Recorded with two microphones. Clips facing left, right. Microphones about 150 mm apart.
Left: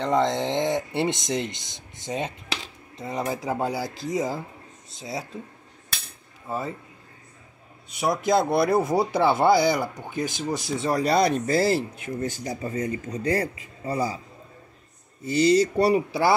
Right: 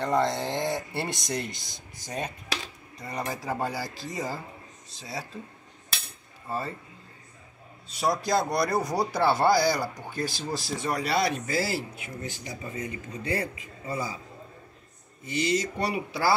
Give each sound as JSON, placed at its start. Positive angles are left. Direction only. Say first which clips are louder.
{"t": 0.0, "sound": "speech", "louder": "left 3 dB", "side_deg": 20}
{"t": 8.0, "sound": "speech", "louder": "left 4 dB", "side_deg": 20}
{"t": 10.9, "sound": "speech", "louder": "left 6 dB", "side_deg": 40}
{"t": 15.2, "sound": "speech", "louder": "left 8 dB", "side_deg": 35}